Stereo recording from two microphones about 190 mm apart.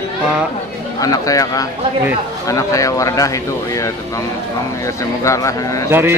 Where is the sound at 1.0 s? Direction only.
15° left (ahead or behind).